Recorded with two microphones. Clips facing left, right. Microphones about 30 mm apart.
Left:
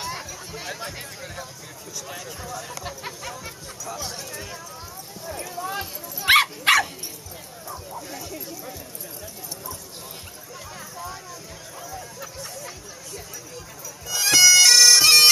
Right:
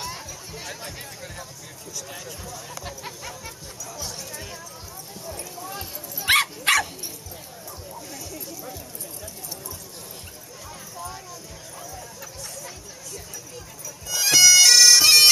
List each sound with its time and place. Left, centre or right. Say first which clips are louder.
0.0 s music: left 2 dB; centre
2.0 s speech: left 1 dB; centre
2.8 s music: left 2 dB; centre
5.2 s clip-clop: left 5 dB; left
6.1 s dog: left 3 dB; centre
8.1 s a sound: left 2 dB; centre
11.8 s music: left 3 dB; centre
14.0 s bagpipes: even; centre